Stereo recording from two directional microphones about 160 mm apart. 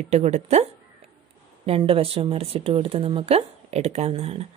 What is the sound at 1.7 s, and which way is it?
Speech, 35° right (ahead or behind).